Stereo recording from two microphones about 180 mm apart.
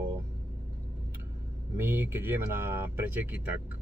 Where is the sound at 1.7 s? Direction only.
10° right (ahead or behind).